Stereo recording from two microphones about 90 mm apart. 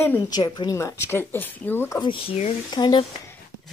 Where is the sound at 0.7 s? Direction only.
35° left (ahead or behind).